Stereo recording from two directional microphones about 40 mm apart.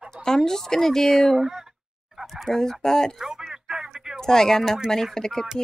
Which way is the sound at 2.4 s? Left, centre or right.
Centre.